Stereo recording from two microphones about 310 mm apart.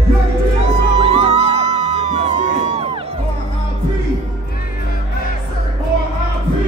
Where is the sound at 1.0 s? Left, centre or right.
Centre.